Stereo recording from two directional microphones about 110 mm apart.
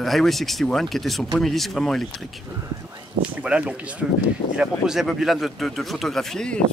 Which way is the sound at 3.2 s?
10° right (ahead or behind).